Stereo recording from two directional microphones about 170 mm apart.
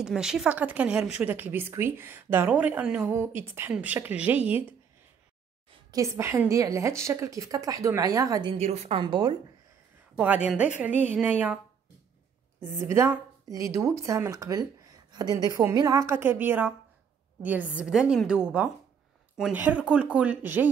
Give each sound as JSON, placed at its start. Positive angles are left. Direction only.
{"t": 0.0, "sound": "a woman's voice", "side_deg": -5}
{"t": 5.7, "sound": "a woman's voice", "side_deg": -20}
{"t": 8.5, "sound": "a woman's voice", "side_deg": -40}
{"t": 9.0, "sound": "a woman's voice", "side_deg": -25}
{"t": 10.1, "sound": "a woman's voice", "side_deg": -5}